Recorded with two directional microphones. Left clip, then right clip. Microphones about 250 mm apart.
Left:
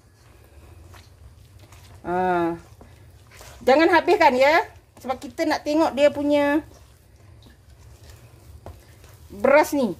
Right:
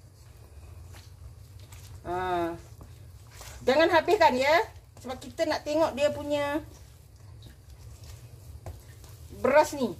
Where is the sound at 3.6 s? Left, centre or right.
Left.